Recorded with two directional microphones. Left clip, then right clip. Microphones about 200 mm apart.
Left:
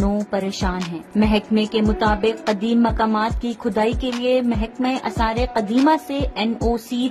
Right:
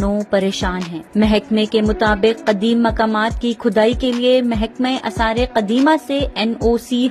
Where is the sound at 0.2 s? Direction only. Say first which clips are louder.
Right 6 dB; 10° right (ahead or behind).